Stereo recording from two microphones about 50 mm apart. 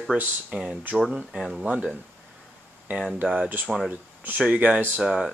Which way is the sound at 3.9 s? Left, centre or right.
Right.